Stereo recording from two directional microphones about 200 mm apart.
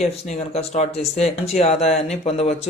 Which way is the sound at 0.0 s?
35° left (ahead or behind).